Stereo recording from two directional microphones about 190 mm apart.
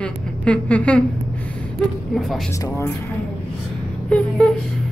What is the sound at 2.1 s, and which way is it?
Speech, centre (ahead or behind).